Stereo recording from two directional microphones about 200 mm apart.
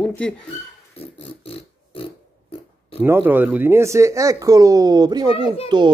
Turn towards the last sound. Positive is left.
turn(degrees=-20)  # may be behind; listen again after turning